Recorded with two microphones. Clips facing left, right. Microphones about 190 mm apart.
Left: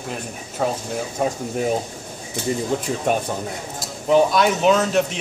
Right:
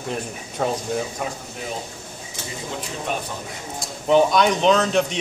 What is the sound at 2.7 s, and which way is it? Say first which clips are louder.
Speech: left 8 dB; 45° left (ahead or behind).